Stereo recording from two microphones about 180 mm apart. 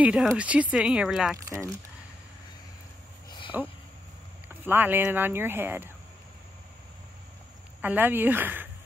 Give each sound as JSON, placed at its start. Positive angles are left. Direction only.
{"t": 0.0, "sound": "speech", "side_deg": -5}
{"t": 3.3, "sound": "a sound", "side_deg": 25}
{"t": 4.6, "sound": "speech", "side_deg": -10}
{"t": 7.8, "sound": "speech", "side_deg": -10}